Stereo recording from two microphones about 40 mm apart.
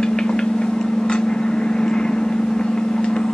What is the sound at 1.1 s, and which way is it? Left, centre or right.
Vehicle, left.